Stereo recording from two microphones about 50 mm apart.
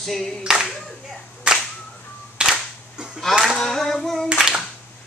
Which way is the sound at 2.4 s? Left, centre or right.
Centre.